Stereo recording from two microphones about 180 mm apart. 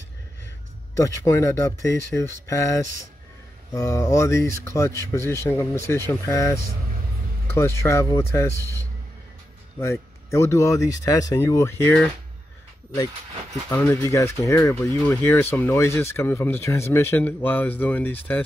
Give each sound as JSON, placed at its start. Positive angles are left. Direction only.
{"t": 0.9, "sound": "speech", "side_deg": 15}
{"t": 13.7, "sound": "speech", "side_deg": 10}